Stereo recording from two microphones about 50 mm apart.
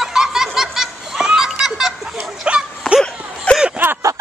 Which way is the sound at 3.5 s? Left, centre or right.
Left.